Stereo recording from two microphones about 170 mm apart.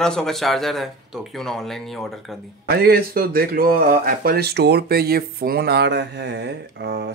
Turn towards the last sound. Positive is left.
turn(degrees=-75)  # may be behind; listen again after turning